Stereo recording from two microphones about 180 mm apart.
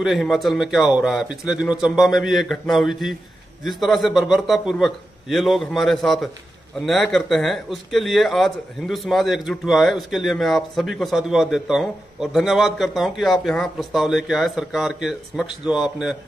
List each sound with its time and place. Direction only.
0.0 s speech: centre (ahead or behind)